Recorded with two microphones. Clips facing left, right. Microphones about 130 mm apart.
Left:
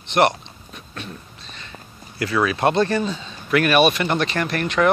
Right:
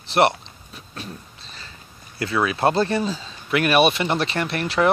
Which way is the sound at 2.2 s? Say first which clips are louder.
Left 1 dB; 25° right (ahead or behind).